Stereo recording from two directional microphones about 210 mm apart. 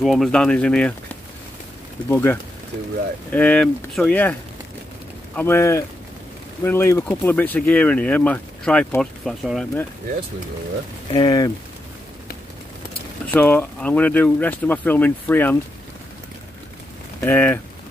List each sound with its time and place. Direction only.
0.0 s speech: centre (ahead or behind)
2.0 s speech: 10° left (ahead or behind)
11.1 s speech: 20° left (ahead or behind)
13.3 s speech: 10° left (ahead or behind)
17.2 s speech: 10° left (ahead or behind)